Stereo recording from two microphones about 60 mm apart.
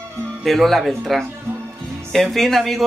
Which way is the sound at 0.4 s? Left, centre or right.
Centre.